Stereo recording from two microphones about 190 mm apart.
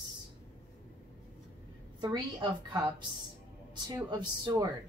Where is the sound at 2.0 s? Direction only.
20° right (ahead or behind).